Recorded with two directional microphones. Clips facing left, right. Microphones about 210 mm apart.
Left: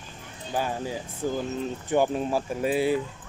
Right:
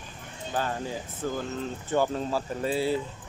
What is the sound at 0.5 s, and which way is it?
Speech, 10° left (ahead or behind).